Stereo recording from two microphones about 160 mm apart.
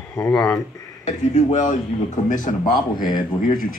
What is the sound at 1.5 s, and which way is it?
Speech, 50° left (ahead or behind).